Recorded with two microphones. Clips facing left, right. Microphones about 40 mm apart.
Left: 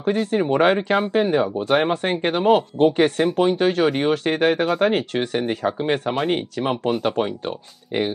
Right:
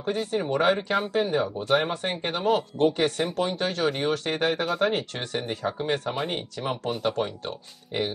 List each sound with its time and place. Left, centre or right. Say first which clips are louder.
0.0 s speech: left 7 dB; left